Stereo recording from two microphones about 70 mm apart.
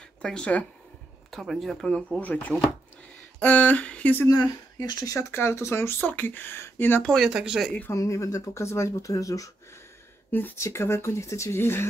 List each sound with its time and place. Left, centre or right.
0.2 s speech: centre
1.3 s speech: centre; by 4.3 s left
4.3 s speech: left
5.3 s speech: left
5.9 s speech: left
7.2 s speech: centre
7.9 s speech: left
10.6 s speech: left